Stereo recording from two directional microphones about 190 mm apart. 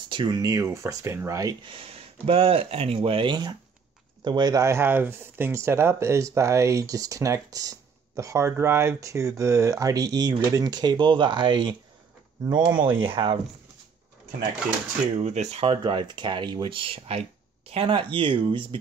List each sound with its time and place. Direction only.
0.1 s speech: 25° right (ahead or behind)
15.1 s speech: 35° right (ahead or behind)